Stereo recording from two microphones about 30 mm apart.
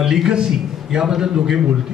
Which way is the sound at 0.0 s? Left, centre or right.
Centre.